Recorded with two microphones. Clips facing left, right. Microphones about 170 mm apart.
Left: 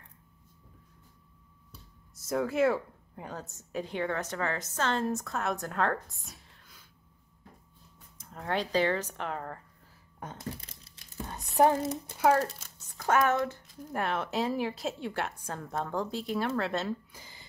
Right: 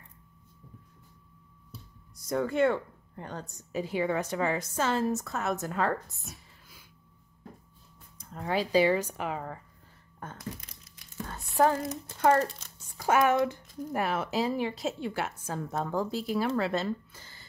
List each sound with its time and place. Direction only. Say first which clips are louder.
2.2 s a woman's voice: right 1 dB; 5° left (ahead or behind)
8.2 s a woman's voice: right 2 dB; centre (ahead or behind)
10.2 s crumpling: left 1 dB; 25° left (ahead or behind)
11.5 s speech: left 1 dB; 20° left (ahead or behind)
12.2 s a woman's voice: right 1 dB; 5° left (ahead or behind)
12.7 s a woman's voice: right 1 dB; 10° right (ahead or behind)
17.1 s a sound: left 1 dB; 15° left (ahead or behind)